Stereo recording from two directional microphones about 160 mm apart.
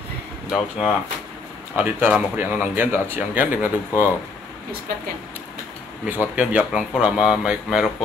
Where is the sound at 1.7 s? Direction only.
10° right (ahead or behind).